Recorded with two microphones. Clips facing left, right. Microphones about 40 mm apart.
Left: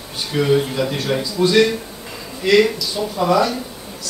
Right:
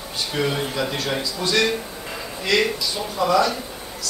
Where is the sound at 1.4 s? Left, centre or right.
Centre.